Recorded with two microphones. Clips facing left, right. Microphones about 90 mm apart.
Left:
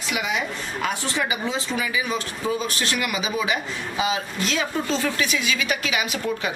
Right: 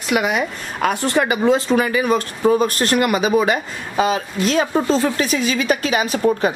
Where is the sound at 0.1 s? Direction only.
55° right (ahead or behind).